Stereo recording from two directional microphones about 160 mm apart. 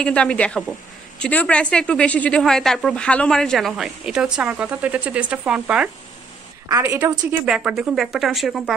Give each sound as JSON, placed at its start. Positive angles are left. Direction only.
{"t": 0.0, "sound": "speech", "side_deg": 5}
{"t": 6.7, "sound": "a woman's voice", "side_deg": -15}
{"t": 7.4, "sound": "speech", "side_deg": -5}